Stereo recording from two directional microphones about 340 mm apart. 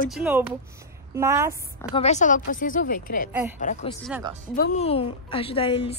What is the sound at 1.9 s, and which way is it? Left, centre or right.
Speech, centre.